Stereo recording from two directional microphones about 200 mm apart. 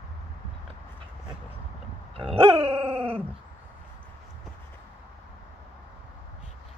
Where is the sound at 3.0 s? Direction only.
30° right (ahead or behind).